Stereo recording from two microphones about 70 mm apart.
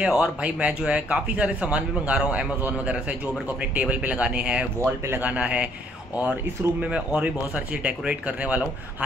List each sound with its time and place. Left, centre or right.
0.0 s speech: centre
4.7 s speech: right
5.3 s speech: centre
6.8 s speech: centre